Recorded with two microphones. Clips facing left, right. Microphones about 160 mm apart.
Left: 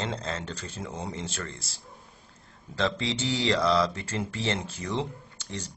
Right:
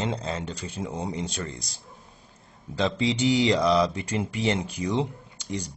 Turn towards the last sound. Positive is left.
turn(degrees=-10)  # may be behind; listen again after turning